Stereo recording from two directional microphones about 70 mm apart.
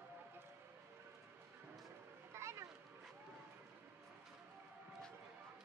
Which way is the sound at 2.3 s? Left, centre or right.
Right.